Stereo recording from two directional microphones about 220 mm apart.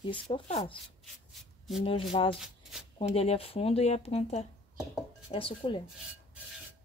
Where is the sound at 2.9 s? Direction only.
25° left (ahead or behind).